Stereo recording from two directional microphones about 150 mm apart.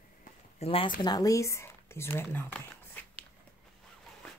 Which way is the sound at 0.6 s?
40° left (ahead or behind).